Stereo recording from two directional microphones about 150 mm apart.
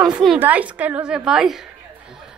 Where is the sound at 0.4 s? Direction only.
10° right (ahead or behind).